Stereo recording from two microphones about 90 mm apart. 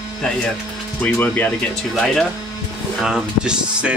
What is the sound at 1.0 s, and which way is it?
Speech, 20° left (ahead or behind).